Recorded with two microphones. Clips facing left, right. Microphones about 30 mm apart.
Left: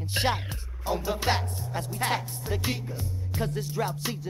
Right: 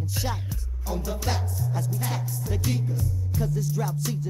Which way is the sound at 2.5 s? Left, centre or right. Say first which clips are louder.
Right 1 dB; left.